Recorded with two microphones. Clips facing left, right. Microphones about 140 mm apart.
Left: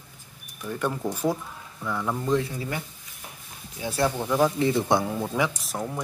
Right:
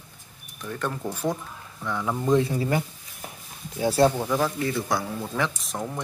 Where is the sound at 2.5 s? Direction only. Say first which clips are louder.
Right 7 dB; 40° right (ahead or behind).